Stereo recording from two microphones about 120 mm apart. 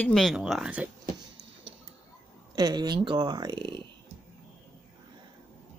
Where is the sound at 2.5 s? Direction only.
35° right (ahead or behind).